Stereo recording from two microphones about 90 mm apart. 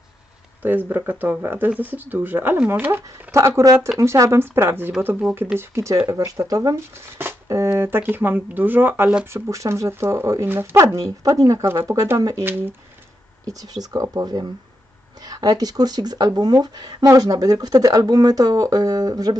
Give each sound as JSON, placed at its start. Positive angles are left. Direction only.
{"t": 0.6, "sound": "speech", "side_deg": -20}
{"t": 6.9, "sound": "speech", "side_deg": -30}
{"t": 9.2, "sound": "speech", "side_deg": -30}
{"t": 11.6, "sound": "speech", "side_deg": -25}
{"t": 12.2, "sound": "speech", "side_deg": -40}
{"t": 13.5, "sound": "speech", "side_deg": -45}